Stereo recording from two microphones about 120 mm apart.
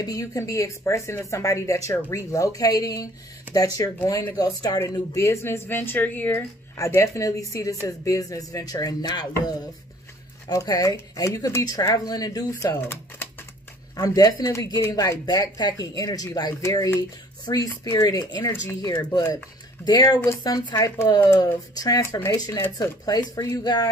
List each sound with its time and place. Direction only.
0.0 s speech: 30° left (ahead or behind)
12.8 s typewriter: 15° left (ahead or behind)
13.9 s speech: 30° left (ahead or behind)
22.8 s speech: 35° left (ahead or behind)